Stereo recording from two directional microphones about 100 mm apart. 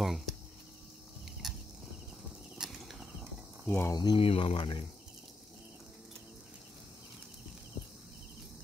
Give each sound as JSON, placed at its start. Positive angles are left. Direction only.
{"t": 0.0, "sound": "cricket", "side_deg": 0}
{"t": 1.4, "sound": "horse", "side_deg": -5}
{"t": 2.5, "sound": "a sound", "side_deg": -5}
{"t": 3.6, "sound": "speech", "side_deg": 20}
{"t": 3.9, "sound": "speech", "side_deg": 50}
{"t": 4.2, "sound": "speech", "side_deg": 70}